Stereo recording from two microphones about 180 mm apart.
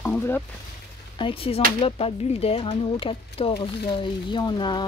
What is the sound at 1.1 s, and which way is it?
Speech, 30° left (ahead or behind).